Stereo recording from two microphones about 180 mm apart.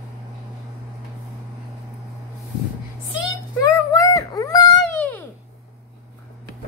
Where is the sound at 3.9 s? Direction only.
20° left (ahead or behind).